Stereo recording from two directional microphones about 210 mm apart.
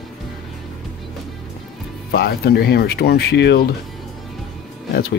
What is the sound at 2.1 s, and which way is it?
Speech, 50° left (ahead or behind).